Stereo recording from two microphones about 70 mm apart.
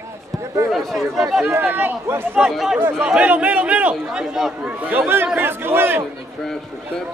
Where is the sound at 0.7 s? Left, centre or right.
Centre.